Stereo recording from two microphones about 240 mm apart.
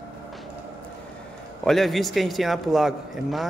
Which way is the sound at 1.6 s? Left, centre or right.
Centre.